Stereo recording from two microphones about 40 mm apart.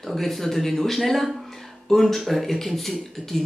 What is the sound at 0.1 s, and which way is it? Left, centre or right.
Speech, centre.